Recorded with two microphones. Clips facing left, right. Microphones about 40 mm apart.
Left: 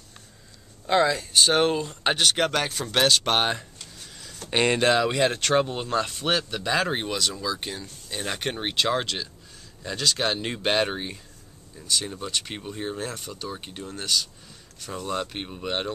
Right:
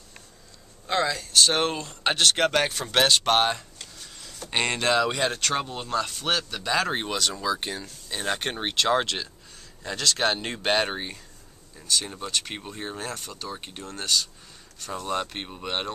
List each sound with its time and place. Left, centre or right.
0.8 s speech: centre
1.5 s speech: centre
3.3 s speech: centre
7.3 s speech: centre
8.6 s speech: centre
8.9 s speech: centre
10.9 s speech: centre
12.3 s speech: centre